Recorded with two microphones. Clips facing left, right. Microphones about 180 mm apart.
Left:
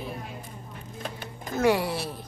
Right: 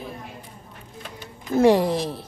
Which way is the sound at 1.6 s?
35° right (ahead or behind).